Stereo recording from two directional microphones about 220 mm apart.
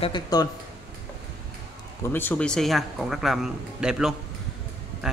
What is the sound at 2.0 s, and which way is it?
A man's voice, 10° left (ahead or behind).